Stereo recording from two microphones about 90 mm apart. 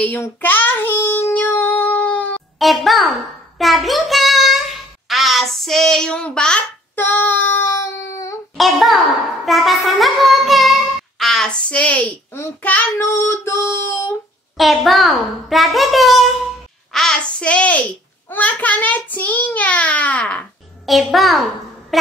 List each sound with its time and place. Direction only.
0.2 s a child's voice: 20° left (ahead or behind)
1.3 s music: 20° left (ahead or behind)
2.6 s a child's voice: centre (ahead or behind)
3.5 s child singing: centre (ahead or behind)
7.0 s a child's voice: 20° left (ahead or behind)
7.8 s a sound: 35° left (ahead or behind)
8.5 s a child's voice: centre (ahead or behind)
9.5 s child singing: centre (ahead or behind)
13.0 s a child's voice: 25° left (ahead or behind)
14.6 s a child's voice: centre (ahead or behind)
20.8 s a child's voice: centre (ahead or behind)